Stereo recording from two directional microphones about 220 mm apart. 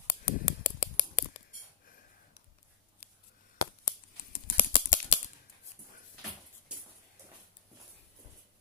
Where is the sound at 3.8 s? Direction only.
45° left (ahead or behind).